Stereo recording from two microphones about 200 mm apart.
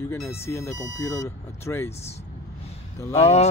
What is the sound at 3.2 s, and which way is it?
Speech, 35° left (ahead or behind).